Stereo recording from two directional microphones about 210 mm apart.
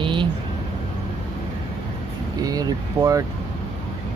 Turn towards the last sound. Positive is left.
turn(degrees=-15)  # may be behind; listen again after turning